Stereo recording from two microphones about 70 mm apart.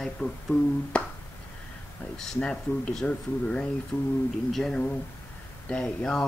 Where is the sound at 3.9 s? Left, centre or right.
Left.